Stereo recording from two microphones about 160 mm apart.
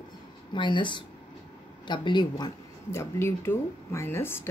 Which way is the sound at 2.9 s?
15° left (ahead or behind).